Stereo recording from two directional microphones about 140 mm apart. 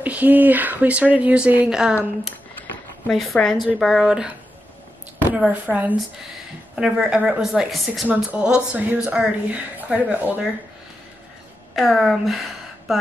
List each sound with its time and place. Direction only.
0.0 s a woman's voice: 10° right (ahead or behind)
3.1 s a woman's voice: centre (ahead or behind)
5.3 s a woman's voice: 10° right (ahead or behind)
11.7 s a woman's voice: centre (ahead or behind)